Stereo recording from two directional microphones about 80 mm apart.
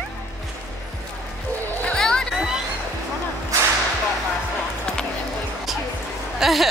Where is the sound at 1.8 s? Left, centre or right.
Centre.